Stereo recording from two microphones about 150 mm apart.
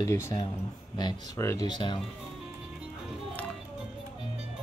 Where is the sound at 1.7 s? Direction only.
30° left (ahead or behind).